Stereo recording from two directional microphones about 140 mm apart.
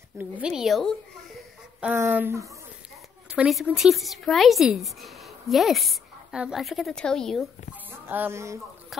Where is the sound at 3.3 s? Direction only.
5° right (ahead or behind).